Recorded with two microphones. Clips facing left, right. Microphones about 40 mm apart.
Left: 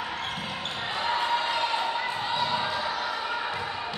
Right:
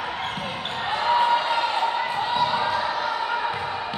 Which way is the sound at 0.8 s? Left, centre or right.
Centre.